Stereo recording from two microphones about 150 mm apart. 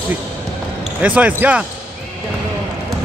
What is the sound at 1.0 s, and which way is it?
Speech, 10° right (ahead or behind).